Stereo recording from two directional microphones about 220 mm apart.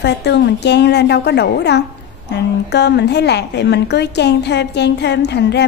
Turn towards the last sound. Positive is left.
turn(degrees=50)  # may be behind; listen again after turning